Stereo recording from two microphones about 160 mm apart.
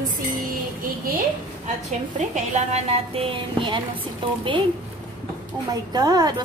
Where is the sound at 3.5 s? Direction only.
30° right (ahead or behind).